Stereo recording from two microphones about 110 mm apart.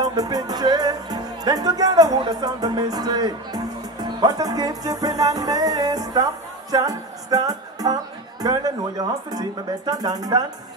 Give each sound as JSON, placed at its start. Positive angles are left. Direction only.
{"t": 0.0, "sound": "music", "side_deg": -35}